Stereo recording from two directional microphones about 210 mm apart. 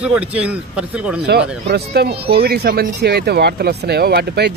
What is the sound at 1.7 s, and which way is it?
Speech, 50° right (ahead or behind).